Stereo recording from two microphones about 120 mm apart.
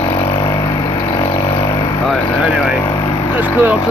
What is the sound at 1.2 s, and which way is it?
Vehicle, 25° left (ahead or behind).